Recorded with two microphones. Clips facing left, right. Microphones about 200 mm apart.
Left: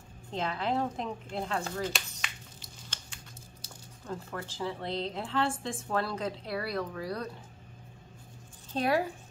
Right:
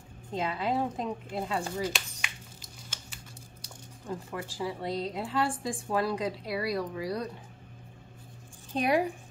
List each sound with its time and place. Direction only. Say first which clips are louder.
0.3 s speech: right 1 dB; 10° right (ahead or behind)
2.9 s typing: right 2 dB; 10° right (ahead or behind)
4.1 s speech: right 2 dB; 15° right (ahead or behind)
8.7 s speech: right 2 dB; 15° right (ahead or behind)